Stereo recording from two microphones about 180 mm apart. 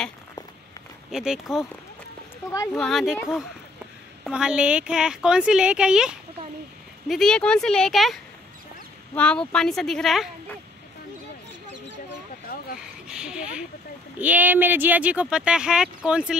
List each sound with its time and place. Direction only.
1.1 s a woman's voice: 5° right (ahead or behind)
2.7 s a woman's voice: centre (ahead or behind)
12.4 s a sound: 50° left (ahead or behind)
13.1 s speech: 5° right (ahead or behind)